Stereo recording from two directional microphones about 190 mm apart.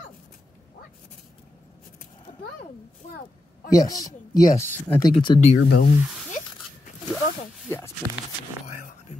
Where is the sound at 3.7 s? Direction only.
20° left (ahead or behind).